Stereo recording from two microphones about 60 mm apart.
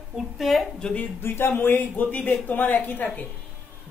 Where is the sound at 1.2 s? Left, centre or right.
Left.